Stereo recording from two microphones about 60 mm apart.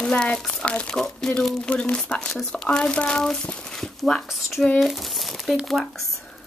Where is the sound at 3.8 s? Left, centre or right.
Centre.